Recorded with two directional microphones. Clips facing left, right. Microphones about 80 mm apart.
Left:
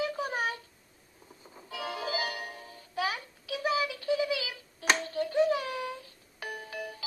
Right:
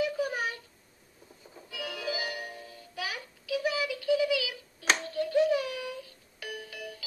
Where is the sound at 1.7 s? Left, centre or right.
Left.